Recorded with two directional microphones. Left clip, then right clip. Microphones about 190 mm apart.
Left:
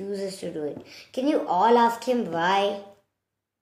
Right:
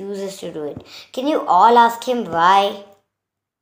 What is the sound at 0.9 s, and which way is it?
Speech, 5° left (ahead or behind).